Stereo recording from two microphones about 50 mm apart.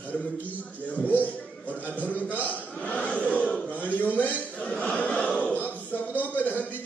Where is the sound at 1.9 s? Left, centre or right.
Left.